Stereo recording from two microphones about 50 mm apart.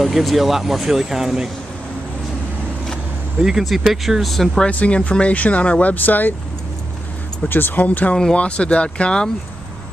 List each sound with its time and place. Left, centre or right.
0.0 s speech: centre
3.3 s speech: centre
4.6 s speech: left
7.4 s speech: left
8.1 s speech: centre